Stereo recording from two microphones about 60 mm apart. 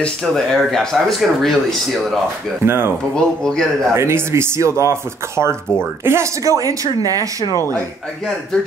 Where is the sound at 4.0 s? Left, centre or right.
Right.